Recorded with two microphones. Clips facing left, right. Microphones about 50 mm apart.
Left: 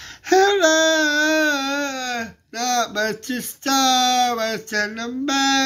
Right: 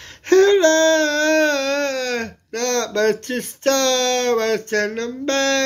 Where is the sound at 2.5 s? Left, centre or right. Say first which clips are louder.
Right 1 dB; right.